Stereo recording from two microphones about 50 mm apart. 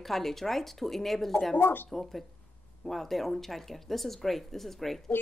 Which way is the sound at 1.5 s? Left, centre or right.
Left.